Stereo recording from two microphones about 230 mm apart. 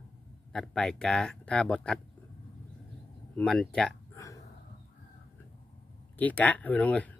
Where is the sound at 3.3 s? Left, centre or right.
Centre.